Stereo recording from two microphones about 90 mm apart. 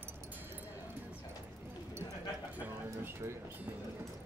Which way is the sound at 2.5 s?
20° right (ahead or behind).